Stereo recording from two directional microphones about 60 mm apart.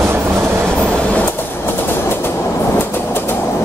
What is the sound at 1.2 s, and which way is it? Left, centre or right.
Train, left.